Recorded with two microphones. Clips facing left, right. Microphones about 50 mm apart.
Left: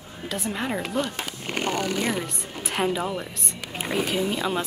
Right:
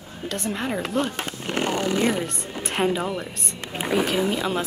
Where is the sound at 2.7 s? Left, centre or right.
Centre.